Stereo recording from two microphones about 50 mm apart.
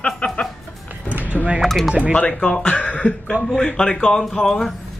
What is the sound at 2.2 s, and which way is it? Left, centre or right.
Speech, centre.